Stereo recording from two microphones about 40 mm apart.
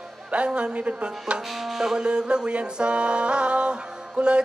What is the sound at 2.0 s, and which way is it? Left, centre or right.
Music, right.